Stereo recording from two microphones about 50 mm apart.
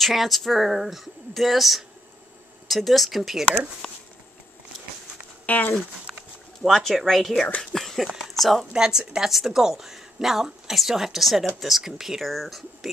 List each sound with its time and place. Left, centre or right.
0.0 s speech: centre
3.8 s a sound: centre
5.5 s speech: left
6.6 s speech: centre
7.6 s a sound: centre
8.2 s speech: centre
8.7 s a woman's voice: centre